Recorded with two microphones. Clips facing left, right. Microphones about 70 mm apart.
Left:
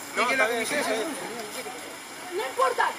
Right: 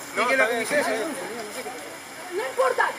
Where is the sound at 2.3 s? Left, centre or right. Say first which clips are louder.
Right 2 dB; centre.